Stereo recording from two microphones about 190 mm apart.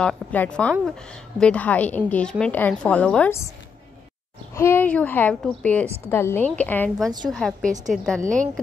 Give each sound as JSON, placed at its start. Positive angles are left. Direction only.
{"t": 0.0, "sound": "a woman's voice", "side_deg": 5}
{"t": 4.6, "sound": "a woman's voice", "side_deg": 10}
{"t": 8.2, "sound": "a woman's voice", "side_deg": -40}